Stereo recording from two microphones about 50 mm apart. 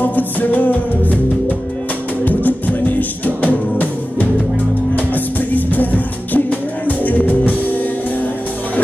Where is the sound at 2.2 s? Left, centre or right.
Left.